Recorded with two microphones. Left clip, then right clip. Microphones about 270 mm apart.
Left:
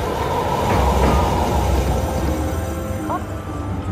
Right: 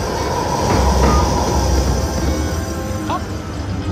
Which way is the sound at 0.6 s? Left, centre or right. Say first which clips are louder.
Right 3 dB; left.